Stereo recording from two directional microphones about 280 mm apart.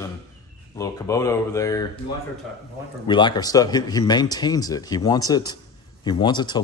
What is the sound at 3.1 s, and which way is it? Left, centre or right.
Speech, centre.